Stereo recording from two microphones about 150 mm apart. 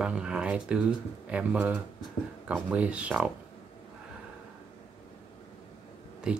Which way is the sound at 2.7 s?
10° right (ahead or behind).